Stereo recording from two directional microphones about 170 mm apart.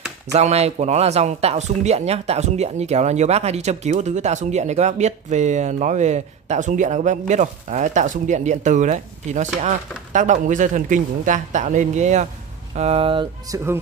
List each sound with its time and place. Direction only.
0.3 s speech: 40° right (ahead or behind)